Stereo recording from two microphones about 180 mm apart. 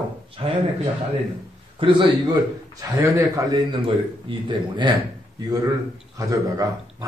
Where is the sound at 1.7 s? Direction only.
30° right (ahead or behind).